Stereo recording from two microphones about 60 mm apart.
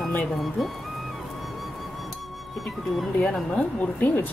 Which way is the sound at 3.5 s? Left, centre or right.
Left.